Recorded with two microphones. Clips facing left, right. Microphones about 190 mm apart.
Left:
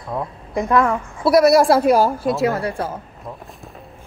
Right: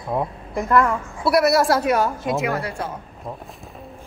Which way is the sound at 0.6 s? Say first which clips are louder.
Left 1 dB; 20° left (ahead or behind).